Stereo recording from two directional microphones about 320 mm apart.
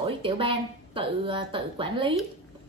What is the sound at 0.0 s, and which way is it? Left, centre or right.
A woman's voice, centre.